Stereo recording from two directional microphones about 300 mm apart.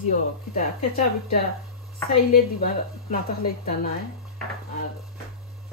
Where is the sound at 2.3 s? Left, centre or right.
Left.